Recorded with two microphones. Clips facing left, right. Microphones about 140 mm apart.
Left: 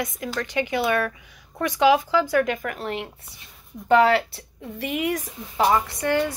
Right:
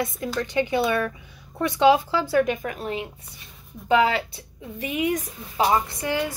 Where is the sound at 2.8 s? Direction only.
65° left (ahead or behind).